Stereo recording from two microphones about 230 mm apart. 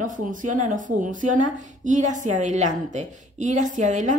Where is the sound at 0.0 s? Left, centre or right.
Right.